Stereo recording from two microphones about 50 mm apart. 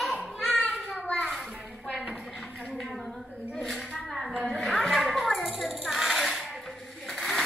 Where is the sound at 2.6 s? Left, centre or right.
Centre.